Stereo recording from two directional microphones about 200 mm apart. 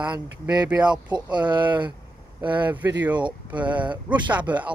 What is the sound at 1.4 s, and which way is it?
Speech, 25° right (ahead or behind).